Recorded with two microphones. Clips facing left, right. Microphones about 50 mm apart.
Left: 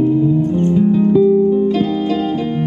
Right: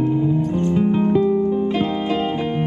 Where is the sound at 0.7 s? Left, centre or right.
Right.